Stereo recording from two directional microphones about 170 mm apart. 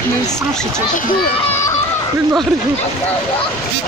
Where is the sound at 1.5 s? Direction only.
15° left (ahead or behind).